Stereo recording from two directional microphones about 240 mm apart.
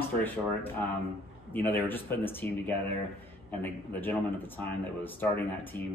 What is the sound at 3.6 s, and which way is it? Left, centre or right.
Speech, centre.